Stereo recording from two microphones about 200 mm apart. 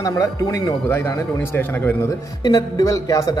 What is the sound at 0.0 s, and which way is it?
Speech, 15° left (ahead or behind).